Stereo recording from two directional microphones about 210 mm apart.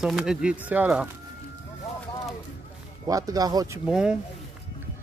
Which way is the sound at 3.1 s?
15° right (ahead or behind).